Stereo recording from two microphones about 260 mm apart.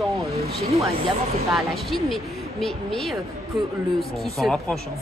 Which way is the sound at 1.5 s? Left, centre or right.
Centre.